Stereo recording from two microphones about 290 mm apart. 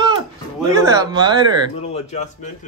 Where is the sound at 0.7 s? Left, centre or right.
Centre.